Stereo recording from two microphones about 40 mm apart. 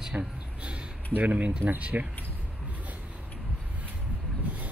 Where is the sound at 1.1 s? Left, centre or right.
Right.